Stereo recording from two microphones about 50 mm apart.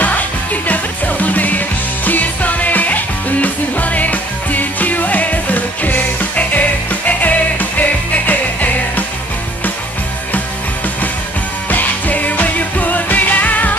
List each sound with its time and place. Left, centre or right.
0.7 s music: left
11.7 s music: left